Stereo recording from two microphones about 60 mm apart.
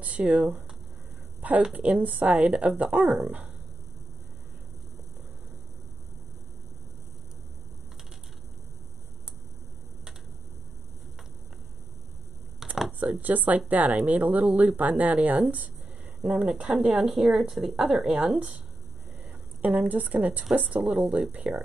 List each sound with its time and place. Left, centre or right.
0.0 s speech: right
1.7 s speech: right
12.6 s a sound: centre
13.0 s speech: right